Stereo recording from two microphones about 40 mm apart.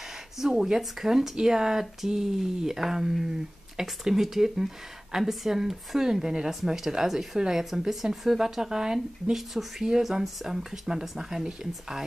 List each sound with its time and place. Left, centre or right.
0.4 s speech: centre
9.3 s speech: centre